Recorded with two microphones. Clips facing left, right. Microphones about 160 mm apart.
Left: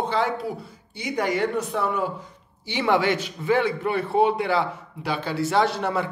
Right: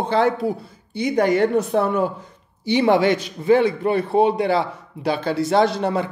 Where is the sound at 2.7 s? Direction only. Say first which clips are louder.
Right 5 dB; 40° right (ahead or behind).